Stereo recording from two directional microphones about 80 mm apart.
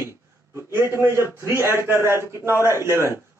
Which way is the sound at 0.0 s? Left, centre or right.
Right.